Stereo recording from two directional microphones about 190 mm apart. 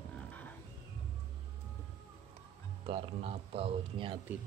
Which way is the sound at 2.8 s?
30° right (ahead or behind).